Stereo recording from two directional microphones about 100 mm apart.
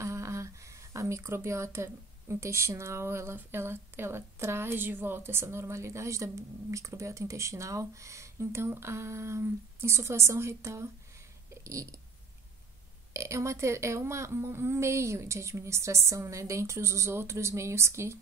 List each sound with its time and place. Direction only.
0.0 s speech: 30° right (ahead or behind)
13.1 s speech: 30° right (ahead or behind)